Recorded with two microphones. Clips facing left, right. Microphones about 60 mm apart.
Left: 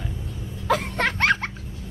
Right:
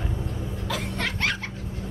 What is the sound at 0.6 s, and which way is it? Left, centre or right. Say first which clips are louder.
Laughter: left 8 dB; left.